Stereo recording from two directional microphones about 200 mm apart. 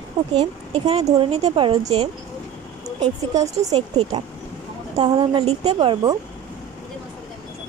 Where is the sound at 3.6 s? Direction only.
30° right (ahead or behind).